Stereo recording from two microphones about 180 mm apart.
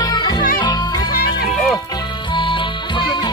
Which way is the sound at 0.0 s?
20° left (ahead or behind).